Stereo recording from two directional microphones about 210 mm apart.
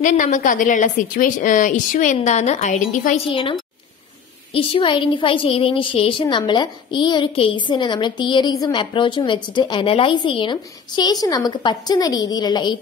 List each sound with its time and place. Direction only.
0.0 s a woman's voice: 35° left (ahead or behind)
4.6 s a woman's voice: 25° left (ahead or behind)